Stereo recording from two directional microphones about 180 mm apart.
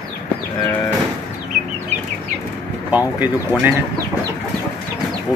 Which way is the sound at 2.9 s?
10° right (ahead or behind).